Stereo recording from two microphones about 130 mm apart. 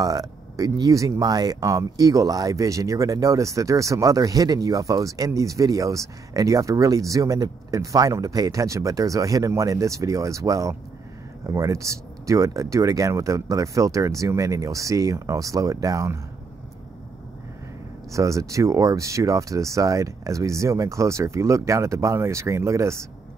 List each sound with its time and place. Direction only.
0.0 s speech: 25° right (ahead or behind)
18.1 s speech: 25° right (ahead or behind)